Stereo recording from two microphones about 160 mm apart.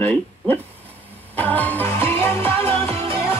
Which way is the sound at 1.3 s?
10° left (ahead or behind).